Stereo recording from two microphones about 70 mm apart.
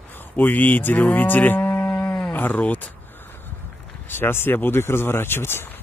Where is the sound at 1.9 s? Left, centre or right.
Centre.